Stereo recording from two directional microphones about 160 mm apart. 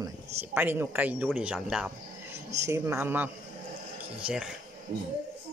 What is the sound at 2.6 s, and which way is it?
Speech, 15° right (ahead or behind).